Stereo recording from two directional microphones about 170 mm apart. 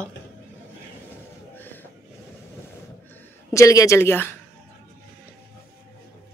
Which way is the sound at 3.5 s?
20° left (ahead or behind).